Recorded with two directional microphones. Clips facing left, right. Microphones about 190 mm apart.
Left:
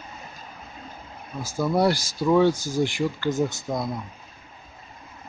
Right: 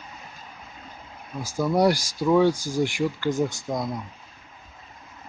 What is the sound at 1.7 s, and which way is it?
Speech, 15° right (ahead or behind).